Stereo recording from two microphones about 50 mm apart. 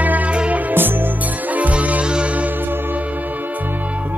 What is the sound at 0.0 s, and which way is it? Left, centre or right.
Music, right.